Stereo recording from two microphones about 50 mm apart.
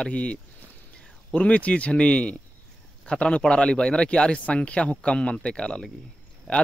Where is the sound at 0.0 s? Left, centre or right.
Left.